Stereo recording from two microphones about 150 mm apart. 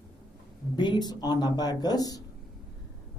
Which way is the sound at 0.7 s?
30° left (ahead or behind).